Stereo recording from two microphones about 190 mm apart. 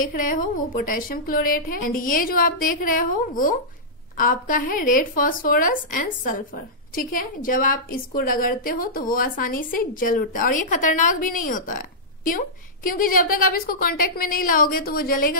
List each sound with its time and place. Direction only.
0.0 s speech: 45° left (ahead or behind)